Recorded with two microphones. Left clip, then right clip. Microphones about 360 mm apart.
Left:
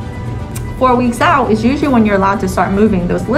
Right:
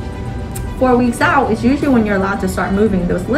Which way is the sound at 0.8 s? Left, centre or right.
Centre.